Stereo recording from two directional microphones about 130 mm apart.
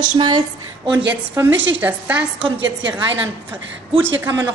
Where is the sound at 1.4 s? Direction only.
15° right (ahead or behind).